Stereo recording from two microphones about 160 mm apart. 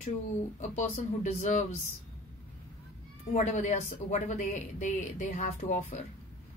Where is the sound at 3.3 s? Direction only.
50° left (ahead or behind).